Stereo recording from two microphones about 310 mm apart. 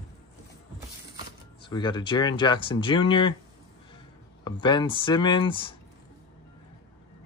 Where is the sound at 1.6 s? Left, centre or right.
Centre.